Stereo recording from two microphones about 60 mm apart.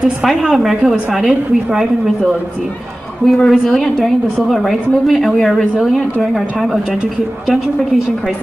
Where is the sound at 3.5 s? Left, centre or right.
Centre.